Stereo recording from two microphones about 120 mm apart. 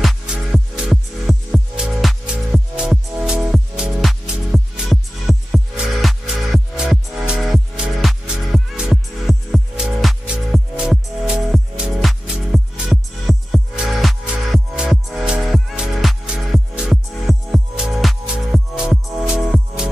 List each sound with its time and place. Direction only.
0.0 s music: centre (ahead or behind)